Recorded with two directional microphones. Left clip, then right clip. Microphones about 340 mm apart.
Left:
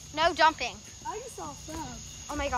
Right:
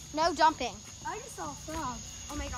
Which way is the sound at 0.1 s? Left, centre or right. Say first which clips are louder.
Left 2 dB; centre.